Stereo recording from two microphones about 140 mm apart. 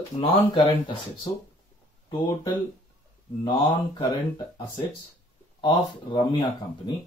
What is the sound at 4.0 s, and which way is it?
Speech, 30° left (ahead or behind).